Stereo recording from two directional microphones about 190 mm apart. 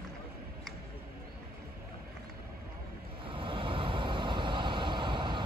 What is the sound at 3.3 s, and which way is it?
Vehicle, 25° right (ahead or behind).